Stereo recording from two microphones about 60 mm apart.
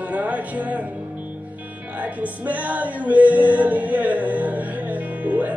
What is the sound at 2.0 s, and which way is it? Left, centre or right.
Music, right.